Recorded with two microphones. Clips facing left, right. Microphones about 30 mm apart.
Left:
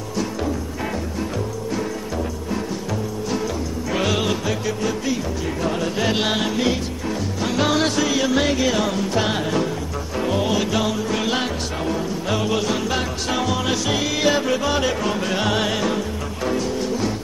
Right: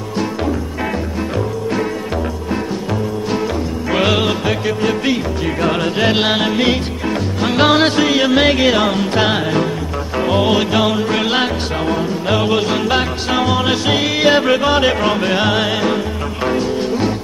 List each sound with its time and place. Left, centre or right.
3.9 s music: right
5.9 s music: right